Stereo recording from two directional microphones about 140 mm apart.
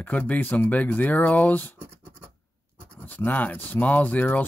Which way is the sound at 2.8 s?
10° left (ahead or behind).